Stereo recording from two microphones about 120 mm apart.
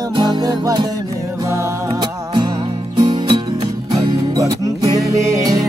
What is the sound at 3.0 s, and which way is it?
Music, 40° right (ahead or behind).